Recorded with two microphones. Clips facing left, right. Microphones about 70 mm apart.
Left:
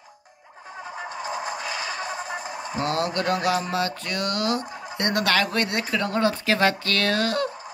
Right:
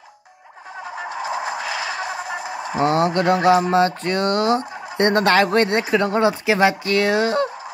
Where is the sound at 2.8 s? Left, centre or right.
Right.